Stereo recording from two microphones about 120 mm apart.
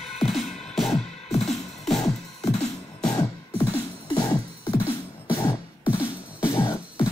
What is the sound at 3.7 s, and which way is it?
Music, 30° left (ahead or behind).